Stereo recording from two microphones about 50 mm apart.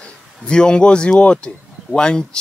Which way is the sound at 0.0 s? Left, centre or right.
Centre.